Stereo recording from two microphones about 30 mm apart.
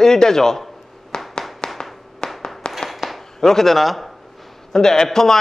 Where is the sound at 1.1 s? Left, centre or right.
Left.